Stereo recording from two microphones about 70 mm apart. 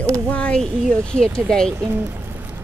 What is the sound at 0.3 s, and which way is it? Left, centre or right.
Speech, centre.